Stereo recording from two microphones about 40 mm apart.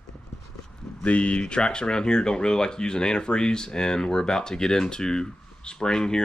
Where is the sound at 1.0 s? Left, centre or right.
Left.